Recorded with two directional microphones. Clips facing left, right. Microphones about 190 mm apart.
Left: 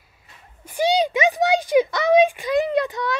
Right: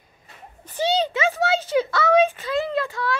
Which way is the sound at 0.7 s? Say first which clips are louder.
Left 3 dB; 10° left (ahead or behind).